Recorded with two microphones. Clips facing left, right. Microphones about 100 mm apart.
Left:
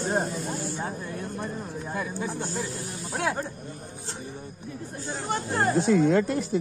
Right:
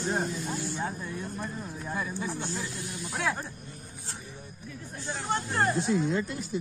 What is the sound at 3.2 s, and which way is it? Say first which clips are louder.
Speech: left 3 dB; 50° left (ahead or behind).